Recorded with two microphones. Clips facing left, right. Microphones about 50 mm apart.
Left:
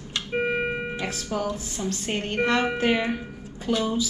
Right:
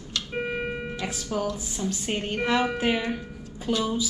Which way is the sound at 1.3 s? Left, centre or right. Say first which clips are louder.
Even; centre.